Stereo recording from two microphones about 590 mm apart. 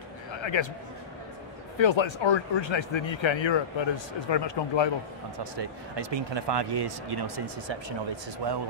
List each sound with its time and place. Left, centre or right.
0.3 s a sound: left
1.8 s speech: left
5.4 s speech: right